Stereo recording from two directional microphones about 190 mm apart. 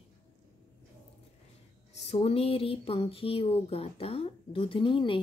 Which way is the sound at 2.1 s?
30° left (ahead or behind).